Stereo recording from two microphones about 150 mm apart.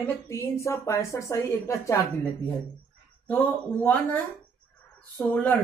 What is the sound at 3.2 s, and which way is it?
Speech, 10° left (ahead or behind).